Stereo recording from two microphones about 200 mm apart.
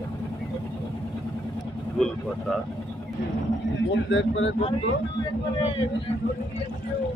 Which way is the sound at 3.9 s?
65° left (ahead or behind).